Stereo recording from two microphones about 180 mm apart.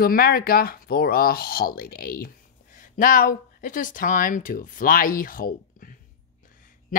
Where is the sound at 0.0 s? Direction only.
55° left (ahead or behind).